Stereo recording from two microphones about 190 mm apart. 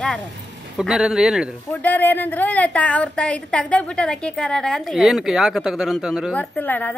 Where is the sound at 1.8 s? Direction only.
10° left (ahead or behind).